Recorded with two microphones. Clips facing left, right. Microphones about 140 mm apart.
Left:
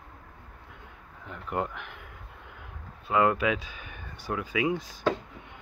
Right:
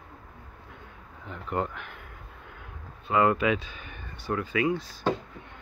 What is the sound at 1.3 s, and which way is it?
Speech, 5° left (ahead or behind).